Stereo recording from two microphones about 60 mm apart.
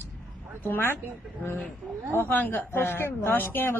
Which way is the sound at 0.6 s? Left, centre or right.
Left.